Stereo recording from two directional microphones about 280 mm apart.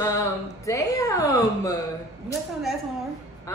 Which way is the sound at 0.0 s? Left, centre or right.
Centre.